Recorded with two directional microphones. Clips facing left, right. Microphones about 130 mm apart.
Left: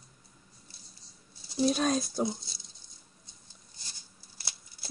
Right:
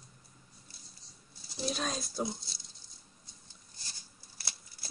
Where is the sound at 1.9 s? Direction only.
Centre (ahead or behind).